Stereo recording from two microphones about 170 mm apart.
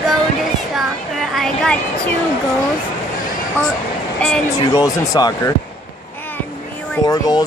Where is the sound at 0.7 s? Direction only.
Centre (ahead or behind).